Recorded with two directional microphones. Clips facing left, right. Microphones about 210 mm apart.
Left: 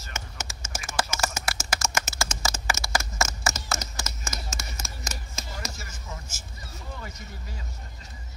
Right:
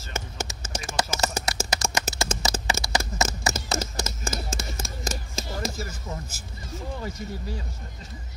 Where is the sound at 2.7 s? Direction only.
20° right (ahead or behind).